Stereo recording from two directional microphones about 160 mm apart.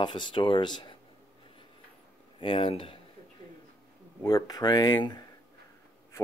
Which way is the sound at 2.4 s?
35° left (ahead or behind).